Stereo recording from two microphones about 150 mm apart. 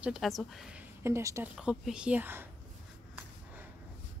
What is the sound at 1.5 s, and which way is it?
Speech, 5° right (ahead or behind).